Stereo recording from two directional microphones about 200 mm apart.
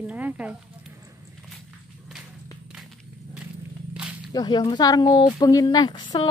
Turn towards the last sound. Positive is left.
turn(degrees=20)  # may be behind; listen again after turning